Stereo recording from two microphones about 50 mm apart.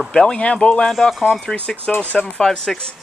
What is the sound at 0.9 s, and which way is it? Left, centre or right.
Speech, centre.